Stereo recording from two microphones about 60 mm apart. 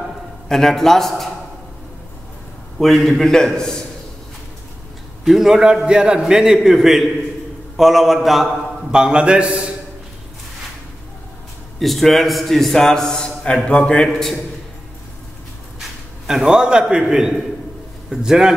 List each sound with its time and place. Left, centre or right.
0.5 s a man's voice: centre
2.8 s a man's voice: centre
5.2 s a man's voice: centre
8.9 s a man's voice: centre
11.8 s a man's voice: centre
14.0 s a man's voice: centre
16.3 s a man's voice: centre